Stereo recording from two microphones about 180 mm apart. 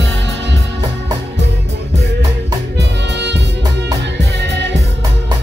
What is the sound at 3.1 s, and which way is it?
Music, 70° right (ahead or behind).